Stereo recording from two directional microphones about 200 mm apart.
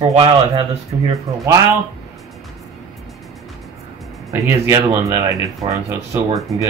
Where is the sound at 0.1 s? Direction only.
30° right (ahead or behind).